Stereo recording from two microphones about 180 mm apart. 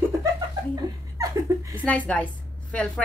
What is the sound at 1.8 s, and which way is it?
A woman's voice, 10° left (ahead or behind).